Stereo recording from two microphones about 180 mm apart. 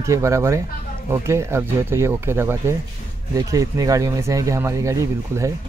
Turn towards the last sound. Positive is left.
turn(degrees=-15)  # may be behind; listen again after turning